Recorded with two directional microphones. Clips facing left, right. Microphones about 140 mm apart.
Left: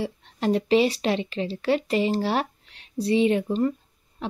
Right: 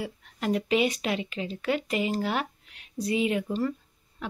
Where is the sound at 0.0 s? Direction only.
30° left (ahead or behind).